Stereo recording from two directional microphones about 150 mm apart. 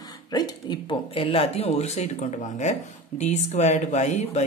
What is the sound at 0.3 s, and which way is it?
Speech, 30° left (ahead or behind).